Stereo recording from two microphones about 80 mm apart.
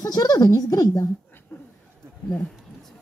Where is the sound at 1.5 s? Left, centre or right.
Left.